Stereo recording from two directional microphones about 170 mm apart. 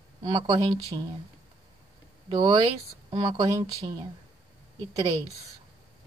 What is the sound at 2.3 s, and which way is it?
Speech, 25° right (ahead or behind).